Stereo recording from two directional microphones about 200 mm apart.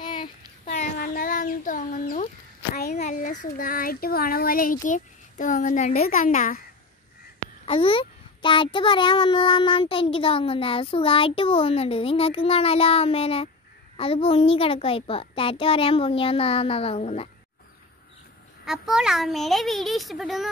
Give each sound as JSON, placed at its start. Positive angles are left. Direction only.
{"t": 0.0, "sound": "child singing", "side_deg": 25}
{"t": 0.7, "sound": "chicken", "side_deg": 40}
{"t": 2.7, "sound": "a child's voice", "side_deg": 45}
{"t": 7.6, "sound": "a child's voice", "side_deg": 25}
{"t": 18.7, "sound": "speech", "side_deg": 0}